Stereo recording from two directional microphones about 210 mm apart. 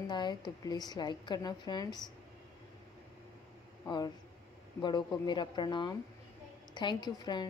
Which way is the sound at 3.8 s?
20° left (ahead or behind).